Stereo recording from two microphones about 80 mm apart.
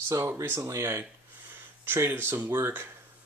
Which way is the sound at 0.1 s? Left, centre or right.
Right.